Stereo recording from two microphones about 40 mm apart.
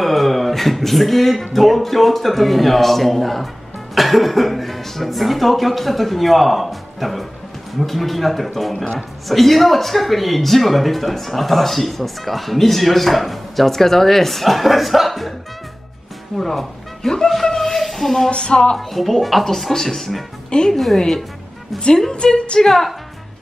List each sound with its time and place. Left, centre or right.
0.0 s a man's voice: centre
16.3 s speech: centre
18.3 s music: left
18.8 s a man's voice: centre
20.4 s a woman's voice: left
20.7 s a man's voice: centre
21.7 s speech: centre